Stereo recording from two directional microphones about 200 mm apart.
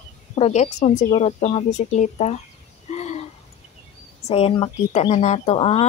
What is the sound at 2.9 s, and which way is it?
Owl, 35° left (ahead or behind).